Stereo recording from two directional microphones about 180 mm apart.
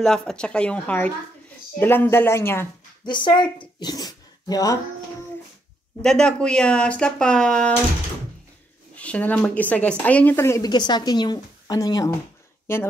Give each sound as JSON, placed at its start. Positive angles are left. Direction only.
{"t": 0.0, "sound": "a woman's voice", "side_deg": 5}
{"t": 3.1, "sound": "speech", "side_deg": 25}
{"t": 3.5, "sound": "a sound", "side_deg": 25}
{"t": 6.0, "sound": "speech", "side_deg": 5}
{"t": 8.9, "sound": "a woman's voice", "side_deg": 5}